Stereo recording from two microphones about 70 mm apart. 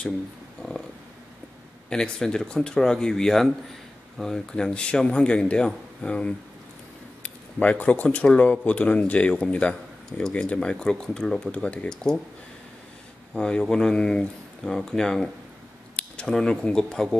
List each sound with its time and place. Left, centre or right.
0.6 s a sound: centre
1.9 s speech: centre
7.5 s speech: left
13.3 s speech: centre